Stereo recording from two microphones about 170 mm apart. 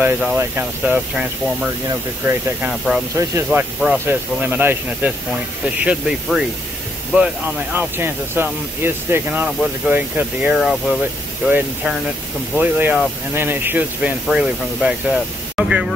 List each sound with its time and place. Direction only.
0.0 s speech: 10° right (ahead or behind)
3.2 s speech: 15° right (ahead or behind)
7.7 s speech: 15° right (ahead or behind)